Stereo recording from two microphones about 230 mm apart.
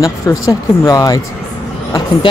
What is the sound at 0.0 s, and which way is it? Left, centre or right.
Speech, centre.